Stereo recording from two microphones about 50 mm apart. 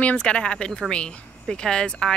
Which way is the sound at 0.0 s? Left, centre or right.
Left.